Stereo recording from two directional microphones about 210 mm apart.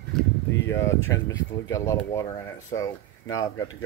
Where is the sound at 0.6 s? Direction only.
15° left (ahead or behind).